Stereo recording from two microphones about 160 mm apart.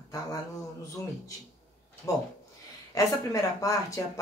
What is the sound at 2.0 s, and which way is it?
A man's voice, 20° left (ahead or behind).